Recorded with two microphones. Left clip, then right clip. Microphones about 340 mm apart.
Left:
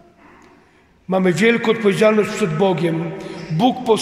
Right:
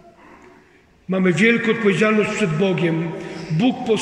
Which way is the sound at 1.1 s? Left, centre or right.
Centre.